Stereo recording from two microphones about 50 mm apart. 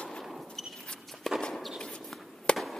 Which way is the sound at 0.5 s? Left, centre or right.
Centre.